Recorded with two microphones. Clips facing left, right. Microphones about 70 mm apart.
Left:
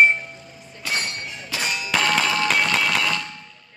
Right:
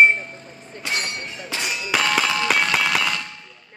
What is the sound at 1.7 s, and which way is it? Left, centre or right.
Music, centre.